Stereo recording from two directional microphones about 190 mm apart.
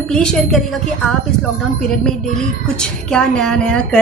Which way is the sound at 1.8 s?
5° left (ahead or behind).